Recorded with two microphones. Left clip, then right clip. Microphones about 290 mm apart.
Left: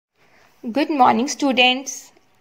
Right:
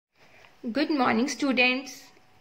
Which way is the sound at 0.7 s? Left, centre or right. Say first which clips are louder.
Left 9 dB; centre.